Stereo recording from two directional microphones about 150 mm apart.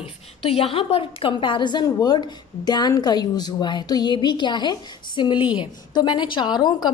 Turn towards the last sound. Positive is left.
turn(degrees=30)  # may be behind; listen again after turning